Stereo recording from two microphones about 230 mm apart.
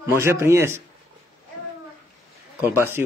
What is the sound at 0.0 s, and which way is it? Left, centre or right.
Speech, centre.